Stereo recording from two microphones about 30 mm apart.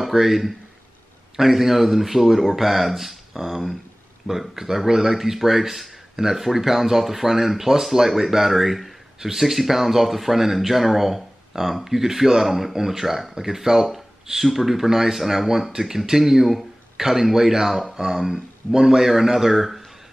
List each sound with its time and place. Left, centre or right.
0.0 s speech: centre
18.3 s speech: right
19.0 s speech: centre